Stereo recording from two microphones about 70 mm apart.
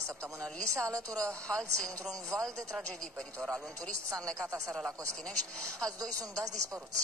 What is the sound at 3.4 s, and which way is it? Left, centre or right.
Speech, right.